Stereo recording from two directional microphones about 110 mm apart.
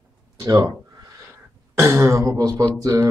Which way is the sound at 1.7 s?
25° right (ahead or behind).